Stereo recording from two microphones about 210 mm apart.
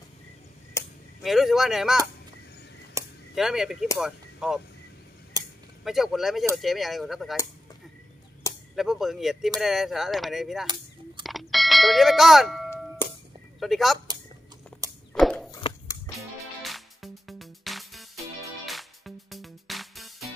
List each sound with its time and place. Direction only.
0.8 s a sound: 15° left (ahead or behind)
1.2 s speech: centre (ahead or behind)
3.0 s a sound: 15° right (ahead or behind)
3.3 s speech: centre (ahead or behind)
5.4 s a sound: 15° right (ahead or behind)
5.9 s speech: centre (ahead or behind)
8.7 s speech: centre (ahead or behind)
11.2 s doorbell: centre (ahead or behind)
13.0 s music: 10° left (ahead or behind)
13.6 s speech: centre (ahead or behind)
15.1 s walk: centre (ahead or behind)
15.5 s a sound: 15° left (ahead or behind)
16.6 s music: centre (ahead or behind)